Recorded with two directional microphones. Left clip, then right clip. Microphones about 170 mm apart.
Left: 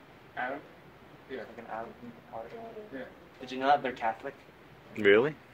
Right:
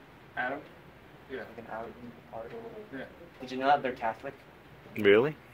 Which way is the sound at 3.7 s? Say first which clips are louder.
Even; 5° right (ahead or behind).